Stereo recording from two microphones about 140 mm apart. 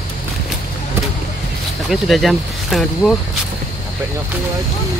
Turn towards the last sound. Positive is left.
turn(degrees=0)  # may be behind; listen again after turning